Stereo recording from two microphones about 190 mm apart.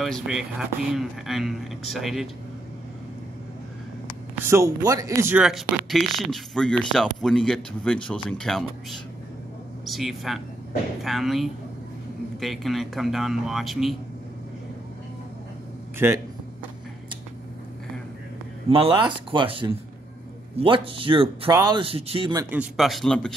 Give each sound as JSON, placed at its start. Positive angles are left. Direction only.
{"t": 0.0, "sound": "speech", "side_deg": 0}
{"t": 4.5, "sound": "speech", "side_deg": -15}
{"t": 16.0, "sound": "speech", "side_deg": -10}
{"t": 18.7, "sound": "speech", "side_deg": -30}